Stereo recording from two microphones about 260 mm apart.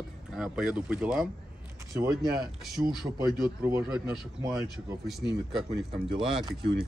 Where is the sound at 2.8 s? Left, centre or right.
Centre.